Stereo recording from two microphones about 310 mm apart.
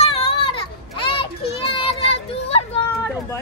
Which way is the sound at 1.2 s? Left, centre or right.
Centre.